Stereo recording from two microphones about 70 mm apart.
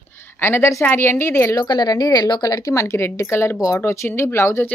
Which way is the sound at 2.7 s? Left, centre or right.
Left.